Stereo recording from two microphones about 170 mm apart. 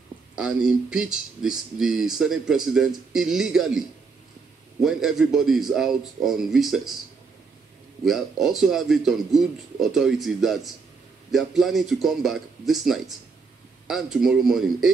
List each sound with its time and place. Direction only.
0.4 s speech: 5° right (ahead or behind)
4.8 s speech: centre (ahead or behind)
8.0 s speech: centre (ahead or behind)